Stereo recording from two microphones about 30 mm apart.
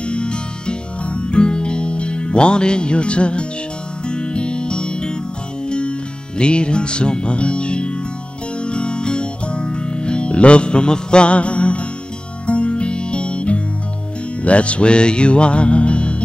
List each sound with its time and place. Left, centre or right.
0.0 s music: left